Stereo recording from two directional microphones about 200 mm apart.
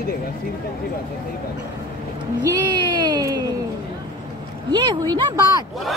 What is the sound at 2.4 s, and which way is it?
Speech, 20° right (ahead or behind).